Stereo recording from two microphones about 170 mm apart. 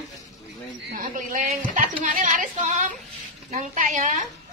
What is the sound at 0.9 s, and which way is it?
Speech, 50° right (ahead or behind).